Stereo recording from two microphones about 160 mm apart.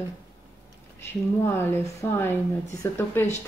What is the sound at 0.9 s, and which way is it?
Speech, 15° left (ahead or behind).